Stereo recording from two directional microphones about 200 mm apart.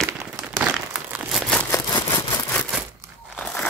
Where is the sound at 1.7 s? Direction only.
20° left (ahead or behind).